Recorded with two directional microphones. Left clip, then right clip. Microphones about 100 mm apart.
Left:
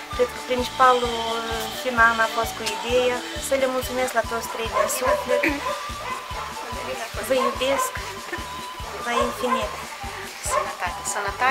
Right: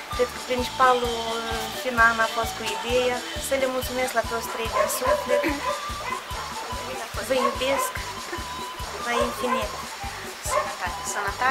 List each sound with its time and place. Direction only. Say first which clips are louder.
0.2 s music: left 2 dB; centre (ahead or behind)
7.2 s music: left 2 dB; centre (ahead or behind)
9.0 s music: left 2 dB; centre (ahead or behind)